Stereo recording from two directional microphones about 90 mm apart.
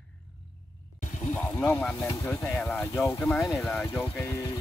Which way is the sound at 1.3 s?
20° left (ahead or behind).